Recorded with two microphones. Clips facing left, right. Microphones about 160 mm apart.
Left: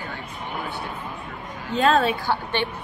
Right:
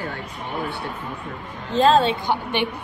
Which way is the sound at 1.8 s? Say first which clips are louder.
Right 3 dB; 30° right (ahead or behind).